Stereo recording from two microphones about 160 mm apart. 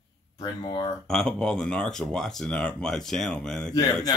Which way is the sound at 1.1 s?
5° left (ahead or behind).